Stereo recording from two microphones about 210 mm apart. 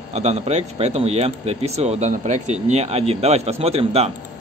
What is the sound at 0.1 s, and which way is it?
Speech, 30° right (ahead or behind).